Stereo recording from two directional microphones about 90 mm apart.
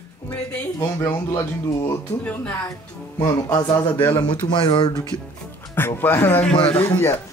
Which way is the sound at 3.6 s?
50° left (ahead or behind).